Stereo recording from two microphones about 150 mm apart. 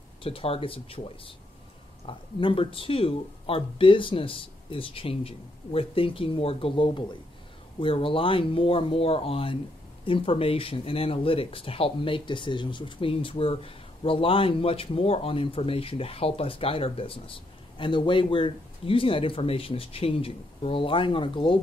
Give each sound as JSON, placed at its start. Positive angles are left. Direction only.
{"t": 0.2, "sound": "speech", "side_deg": 40}